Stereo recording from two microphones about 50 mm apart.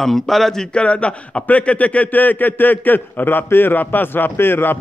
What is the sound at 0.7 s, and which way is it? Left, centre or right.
A man's voice, left.